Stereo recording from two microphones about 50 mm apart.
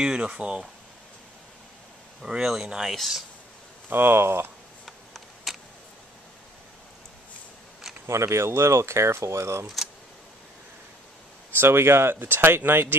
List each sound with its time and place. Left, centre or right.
0.0 s speech: centre
2.2 s speech: centre
3.9 s speech: right
4.8 s camera: centre
8.1 s speech: right
11.6 s speech: right